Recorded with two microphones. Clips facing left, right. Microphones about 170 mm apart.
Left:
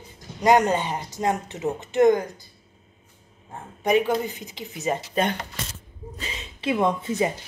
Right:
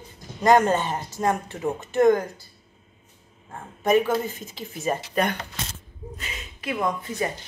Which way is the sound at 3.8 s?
15° left (ahead or behind).